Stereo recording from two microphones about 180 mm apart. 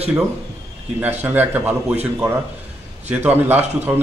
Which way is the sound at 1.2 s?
10° right (ahead or behind).